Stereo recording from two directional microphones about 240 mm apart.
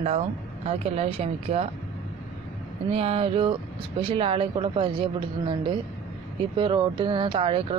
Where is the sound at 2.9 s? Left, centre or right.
Right.